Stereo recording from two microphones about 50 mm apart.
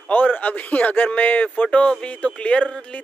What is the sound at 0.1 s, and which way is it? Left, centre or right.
A man's voice, left.